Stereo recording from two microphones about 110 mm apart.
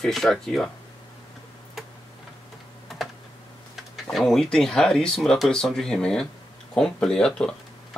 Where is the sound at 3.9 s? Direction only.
Centre (ahead or behind).